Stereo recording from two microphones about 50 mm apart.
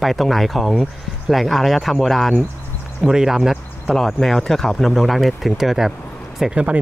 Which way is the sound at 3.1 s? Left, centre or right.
Centre.